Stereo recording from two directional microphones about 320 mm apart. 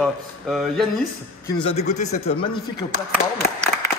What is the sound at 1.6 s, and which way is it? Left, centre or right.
Speech, centre.